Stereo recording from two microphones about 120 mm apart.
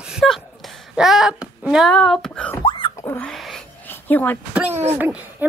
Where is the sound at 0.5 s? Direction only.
Centre (ahead or behind).